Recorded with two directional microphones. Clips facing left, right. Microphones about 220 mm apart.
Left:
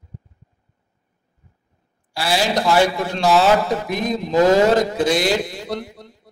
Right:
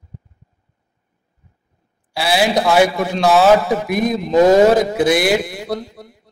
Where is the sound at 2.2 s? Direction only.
65° right (ahead or behind).